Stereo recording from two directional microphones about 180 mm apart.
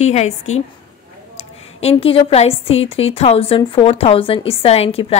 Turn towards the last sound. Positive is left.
turn(degrees=35)  # may be behind; listen again after turning